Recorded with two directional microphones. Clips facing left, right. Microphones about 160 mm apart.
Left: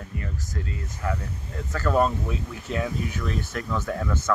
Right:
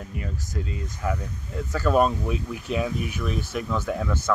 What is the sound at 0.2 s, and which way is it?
Speech, 15° right (ahead or behind).